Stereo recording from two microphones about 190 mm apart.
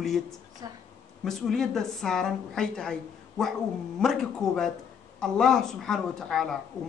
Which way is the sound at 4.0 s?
Centre (ahead or behind).